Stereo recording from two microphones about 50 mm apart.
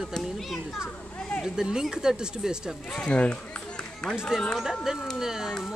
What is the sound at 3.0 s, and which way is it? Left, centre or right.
Speech, left.